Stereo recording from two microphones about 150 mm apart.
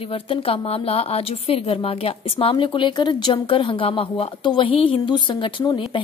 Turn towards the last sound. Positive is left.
turn(degrees=35)  # may be behind; listen again after turning